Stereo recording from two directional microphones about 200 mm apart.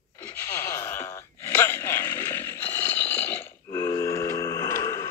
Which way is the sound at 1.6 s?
15° left (ahead or behind).